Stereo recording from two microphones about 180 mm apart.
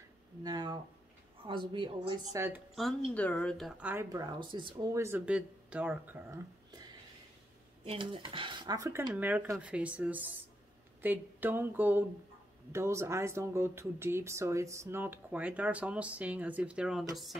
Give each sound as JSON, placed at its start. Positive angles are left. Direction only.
{"t": 0.4, "sound": "a sound", "side_deg": -20}
{"t": 1.4, "sound": "speech", "side_deg": -25}
{"t": 2.3, "sound": "speech", "side_deg": -15}
{"t": 2.7, "sound": "a woman's voice", "side_deg": 0}
{"t": 3.9, "sound": "speech", "side_deg": -15}
{"t": 7.8, "sound": "speech", "side_deg": -30}